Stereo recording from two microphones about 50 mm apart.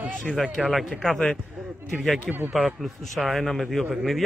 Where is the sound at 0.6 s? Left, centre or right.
Centre.